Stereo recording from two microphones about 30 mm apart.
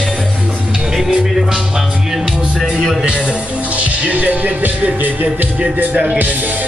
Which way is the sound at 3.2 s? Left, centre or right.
Right.